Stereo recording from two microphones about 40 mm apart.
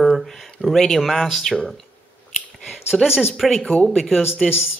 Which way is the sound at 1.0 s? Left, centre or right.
Centre.